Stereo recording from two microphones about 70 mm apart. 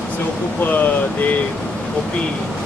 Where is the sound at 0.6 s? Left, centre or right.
Left.